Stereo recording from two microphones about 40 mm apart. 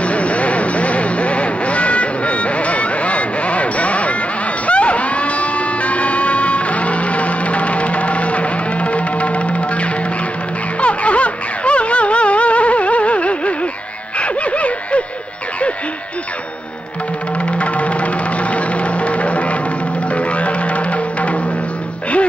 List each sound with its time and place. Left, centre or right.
0.0 s vehicle: left
4.6 s music: left
14.1 s a sound: left
17.5 s music: left